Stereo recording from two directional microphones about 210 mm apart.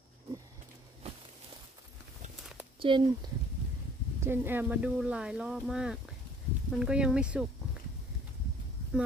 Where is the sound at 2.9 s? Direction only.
25° right (ahead or behind).